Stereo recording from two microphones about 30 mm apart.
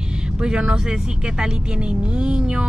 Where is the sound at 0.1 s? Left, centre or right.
Right.